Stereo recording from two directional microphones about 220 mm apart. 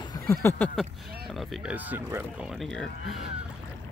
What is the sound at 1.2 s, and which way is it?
Speech, centre (ahead or behind).